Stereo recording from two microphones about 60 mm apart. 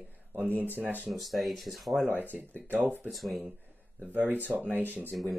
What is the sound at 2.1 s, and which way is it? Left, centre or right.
Speech, right.